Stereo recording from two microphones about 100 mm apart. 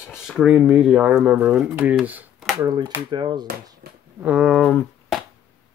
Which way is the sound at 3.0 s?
50° right (ahead or behind).